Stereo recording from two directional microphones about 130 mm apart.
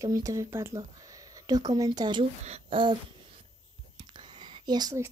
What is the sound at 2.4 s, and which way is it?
Speech, 55° right (ahead or behind).